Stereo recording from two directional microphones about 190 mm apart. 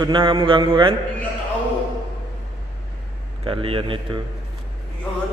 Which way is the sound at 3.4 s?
30° right (ahead or behind).